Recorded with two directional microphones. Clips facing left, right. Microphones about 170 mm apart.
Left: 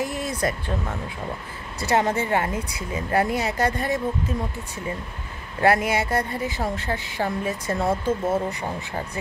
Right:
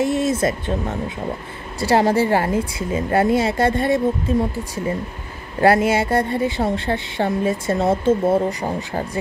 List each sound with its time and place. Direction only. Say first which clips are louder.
0.0 s speech: right 7 dB; 25° right (ahead or behind)
5.6 s speech: right 5 dB; 30° right (ahead or behind)